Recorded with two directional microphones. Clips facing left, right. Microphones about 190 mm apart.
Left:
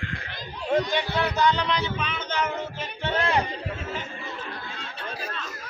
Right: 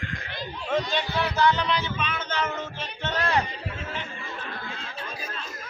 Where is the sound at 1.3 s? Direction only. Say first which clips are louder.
Right 2 dB; 15° left (ahead or behind).